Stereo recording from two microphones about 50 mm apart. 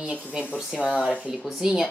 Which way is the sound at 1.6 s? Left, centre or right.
Centre.